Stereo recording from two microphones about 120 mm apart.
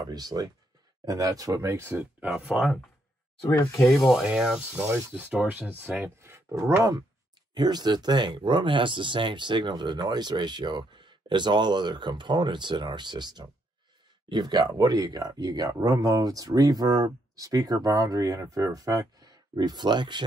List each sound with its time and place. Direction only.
0.0 s speech: 35° right (ahead or behind)
2.2 s speech: 5° right (ahead or behind)
3.4 s speech: 15° left (ahead or behind); by 6.7 s 25° right (ahead or behind)
7.5 s speech: 35° right (ahead or behind)